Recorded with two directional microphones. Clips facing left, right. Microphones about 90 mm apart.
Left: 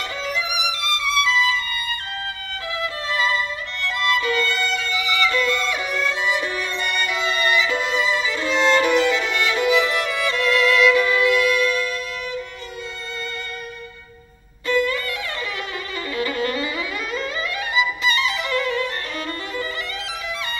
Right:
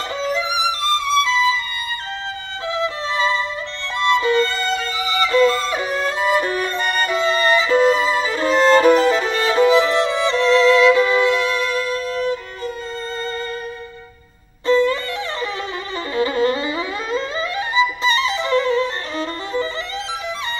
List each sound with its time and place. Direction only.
0.2 s music: 30° right (ahead or behind)
2.7 s music: 25° right (ahead or behind)
14.7 s music: 30° right (ahead or behind)
16.2 s violin: 30° right (ahead or behind)